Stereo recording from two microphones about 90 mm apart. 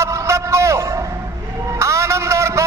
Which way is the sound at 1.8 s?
35° right (ahead or behind).